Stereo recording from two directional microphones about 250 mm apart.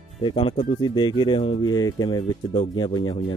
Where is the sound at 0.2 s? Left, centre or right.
Centre.